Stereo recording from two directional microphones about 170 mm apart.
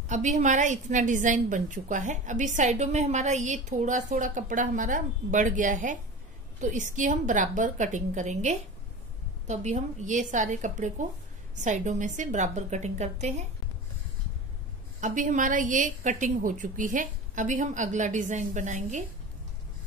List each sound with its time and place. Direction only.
0.1 s a woman's voice: 45° right (ahead or behind)
15.0 s a woman's voice: 45° right (ahead or behind)